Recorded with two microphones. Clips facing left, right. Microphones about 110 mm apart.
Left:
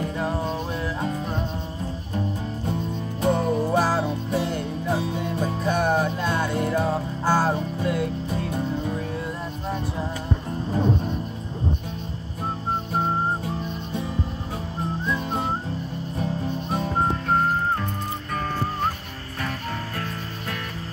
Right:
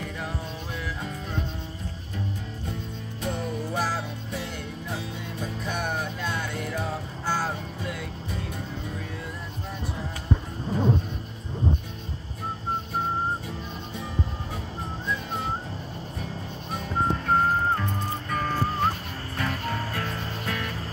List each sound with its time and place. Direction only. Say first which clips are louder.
0.0 s music: left 7 dB; 35° left (ahead or behind)
3.2 s music: left 9 dB; 55° left (ahead or behind)
3.7 s music: left 5 dB; 45° left (ahead or behind)
4.0 s music: left 9 dB; 60° left (ahead or behind)
5.6 s music: left 9 dB; 40° left (ahead or behind)
6.7 s music: left 8 dB; 50° left (ahead or behind)